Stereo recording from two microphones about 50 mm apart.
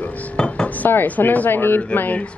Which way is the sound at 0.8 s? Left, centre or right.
Left.